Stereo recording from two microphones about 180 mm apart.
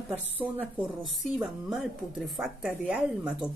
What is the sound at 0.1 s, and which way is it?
A woman's voice, 10° right (ahead or behind).